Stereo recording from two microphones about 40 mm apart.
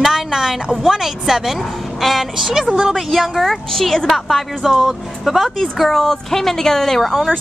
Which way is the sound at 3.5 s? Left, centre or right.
Centre.